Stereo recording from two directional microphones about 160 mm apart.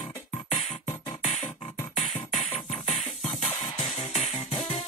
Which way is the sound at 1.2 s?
45° left (ahead or behind).